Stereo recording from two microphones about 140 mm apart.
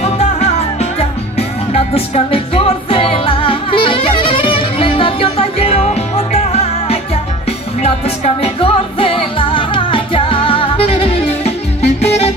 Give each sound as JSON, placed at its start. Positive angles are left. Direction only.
{"t": 0.0, "sound": "music", "side_deg": 50}